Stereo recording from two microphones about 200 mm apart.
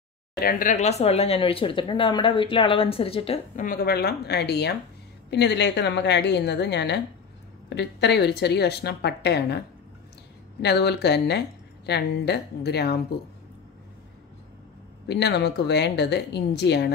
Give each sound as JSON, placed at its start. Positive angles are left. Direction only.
{"t": 0.4, "sound": "speech", "side_deg": 45}
{"t": 3.6, "sound": "a woman's voice", "side_deg": 50}
{"t": 15.0, "sound": "speech", "side_deg": 55}